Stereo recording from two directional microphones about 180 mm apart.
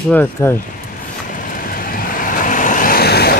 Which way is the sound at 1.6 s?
50° left (ahead or behind).